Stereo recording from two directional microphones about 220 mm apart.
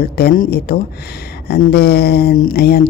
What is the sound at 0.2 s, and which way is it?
A woman's voice, 40° left (ahead or behind).